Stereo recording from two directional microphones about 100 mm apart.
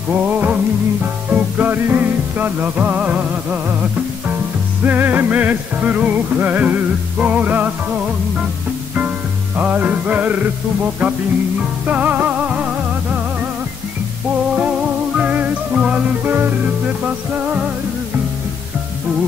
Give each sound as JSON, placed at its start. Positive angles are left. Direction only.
{"t": 0.2, "sound": "music", "side_deg": -15}
{"t": 4.8, "sound": "music", "side_deg": -20}
{"t": 9.6, "sound": "music", "side_deg": -15}
{"t": 11.8, "sound": "music", "side_deg": -15}
{"t": 14.5, "sound": "music", "side_deg": -10}